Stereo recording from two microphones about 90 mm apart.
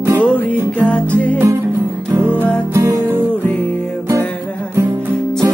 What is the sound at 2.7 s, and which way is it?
Music, 40° right (ahead or behind).